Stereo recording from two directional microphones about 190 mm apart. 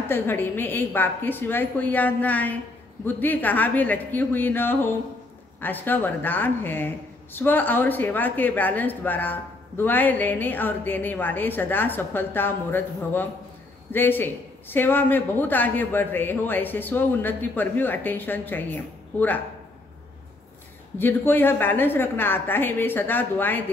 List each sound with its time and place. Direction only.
0.1 s speech: 10° left (ahead or behind)
21.0 s speech: 10° left (ahead or behind)